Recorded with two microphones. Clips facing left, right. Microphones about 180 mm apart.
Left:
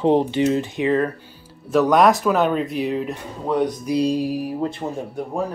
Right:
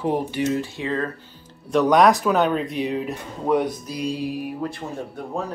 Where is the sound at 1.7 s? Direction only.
Centre (ahead or behind).